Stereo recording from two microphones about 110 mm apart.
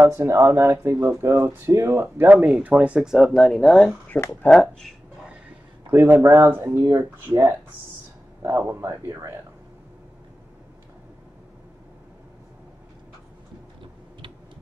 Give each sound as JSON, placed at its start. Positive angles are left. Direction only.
{"t": 0.0, "sound": "speech", "side_deg": -25}
{"t": 5.9, "sound": "speech", "side_deg": -20}
{"t": 8.4, "sound": "speech", "side_deg": -20}